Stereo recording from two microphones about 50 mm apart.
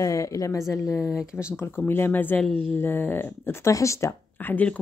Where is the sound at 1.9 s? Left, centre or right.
Left.